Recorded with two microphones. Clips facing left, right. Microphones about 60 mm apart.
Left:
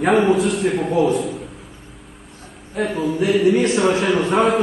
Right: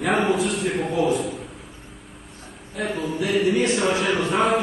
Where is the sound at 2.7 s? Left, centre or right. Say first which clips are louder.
Left 5 dB; centre.